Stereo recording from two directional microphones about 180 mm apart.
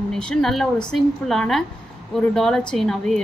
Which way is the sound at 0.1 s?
5° left (ahead or behind).